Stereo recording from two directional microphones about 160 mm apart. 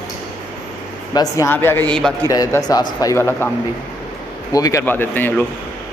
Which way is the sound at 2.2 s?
20° left (ahead or behind).